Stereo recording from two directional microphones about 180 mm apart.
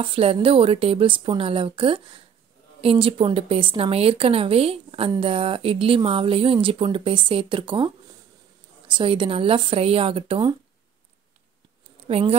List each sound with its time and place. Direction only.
0.0 s a woman's voice: 30° right (ahead or behind)
12.1 s a woman's voice: 35° right (ahead or behind)